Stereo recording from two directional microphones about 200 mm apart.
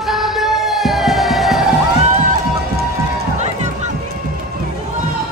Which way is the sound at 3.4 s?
35° right (ahead or behind).